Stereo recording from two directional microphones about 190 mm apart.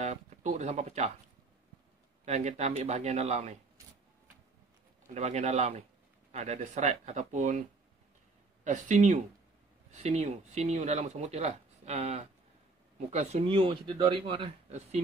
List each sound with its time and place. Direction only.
0.0 s speech: 35° right (ahead or behind)
2.2 s speech: 35° right (ahead or behind)
5.1 s speech: 35° right (ahead or behind)
8.6 s speech: 40° right (ahead or behind)